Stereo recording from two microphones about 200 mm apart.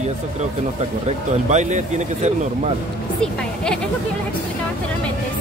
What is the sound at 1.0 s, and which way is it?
Speech, 35° right (ahead or behind).